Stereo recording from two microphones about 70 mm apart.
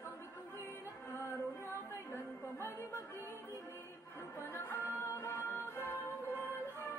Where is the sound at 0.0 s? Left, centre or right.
Left.